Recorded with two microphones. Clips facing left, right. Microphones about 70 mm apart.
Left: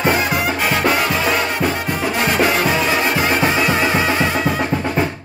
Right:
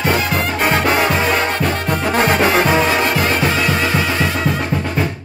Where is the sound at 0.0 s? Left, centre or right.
Left.